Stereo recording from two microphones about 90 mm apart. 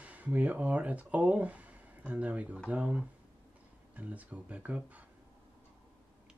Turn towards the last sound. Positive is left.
turn(degrees=-15)  # may be behind; listen again after turning